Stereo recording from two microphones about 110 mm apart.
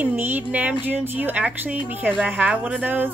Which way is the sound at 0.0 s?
15° right (ahead or behind).